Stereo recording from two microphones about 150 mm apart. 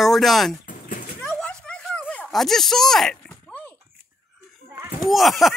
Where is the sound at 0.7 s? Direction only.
65° left (ahead or behind).